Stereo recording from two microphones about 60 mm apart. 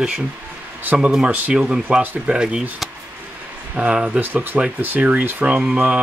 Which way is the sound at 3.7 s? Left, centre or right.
Centre.